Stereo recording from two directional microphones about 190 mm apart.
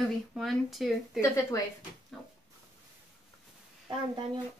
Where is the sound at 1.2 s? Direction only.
15° left (ahead or behind).